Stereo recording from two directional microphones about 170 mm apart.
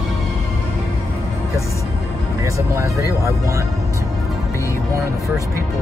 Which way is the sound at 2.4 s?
15° right (ahead or behind).